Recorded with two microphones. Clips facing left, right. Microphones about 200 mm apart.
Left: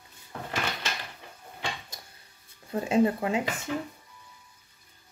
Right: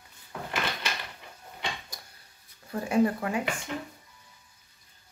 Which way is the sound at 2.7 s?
20° left (ahead or behind).